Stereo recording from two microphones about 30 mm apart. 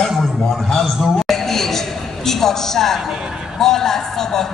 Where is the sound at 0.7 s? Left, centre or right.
Centre.